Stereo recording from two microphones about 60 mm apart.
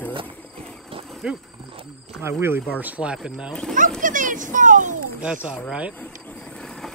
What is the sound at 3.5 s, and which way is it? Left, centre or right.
Speech, centre.